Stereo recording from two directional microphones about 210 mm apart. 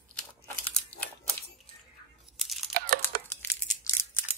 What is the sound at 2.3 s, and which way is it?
Crunch, centre (ahead or behind).